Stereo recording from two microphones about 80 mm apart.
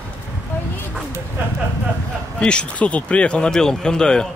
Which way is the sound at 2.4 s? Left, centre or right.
Centre.